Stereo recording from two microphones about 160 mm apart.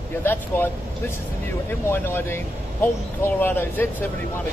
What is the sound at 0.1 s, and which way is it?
Speech, 15° left (ahead or behind).